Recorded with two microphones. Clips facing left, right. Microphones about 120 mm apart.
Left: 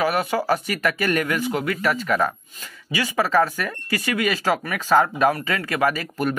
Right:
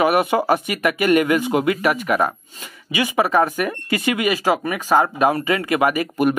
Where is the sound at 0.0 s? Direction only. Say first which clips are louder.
Right 5 dB; 20° right (ahead or behind).